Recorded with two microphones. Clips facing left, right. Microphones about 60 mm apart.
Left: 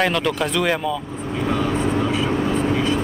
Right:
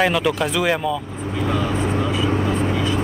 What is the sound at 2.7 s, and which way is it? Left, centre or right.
Vehicle, left.